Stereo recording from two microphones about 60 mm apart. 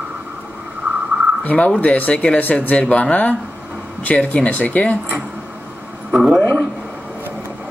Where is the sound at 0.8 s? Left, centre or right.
Centre.